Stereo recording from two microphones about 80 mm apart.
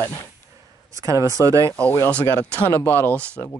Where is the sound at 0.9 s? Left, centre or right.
Right.